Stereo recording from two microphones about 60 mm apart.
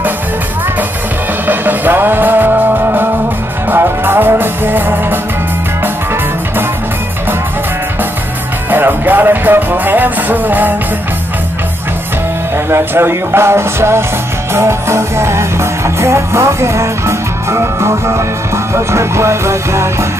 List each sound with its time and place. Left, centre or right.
1.5 s music: right
8.6 s music: right
12.6 s music: right